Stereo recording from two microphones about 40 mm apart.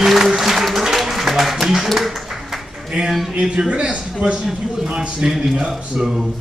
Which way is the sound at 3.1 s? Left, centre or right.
Centre.